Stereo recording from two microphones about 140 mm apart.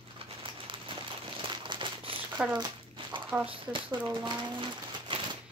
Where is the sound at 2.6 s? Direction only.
35° right (ahead or behind).